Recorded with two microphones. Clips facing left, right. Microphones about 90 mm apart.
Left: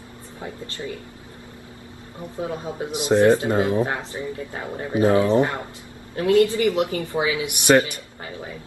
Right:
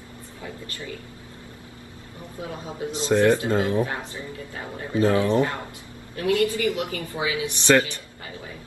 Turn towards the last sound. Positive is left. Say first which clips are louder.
# left 2 dB
turn(degrees=15)  # may be behind; listen again after turning